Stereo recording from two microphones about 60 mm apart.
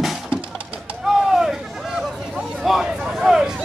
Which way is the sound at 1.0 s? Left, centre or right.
Centre.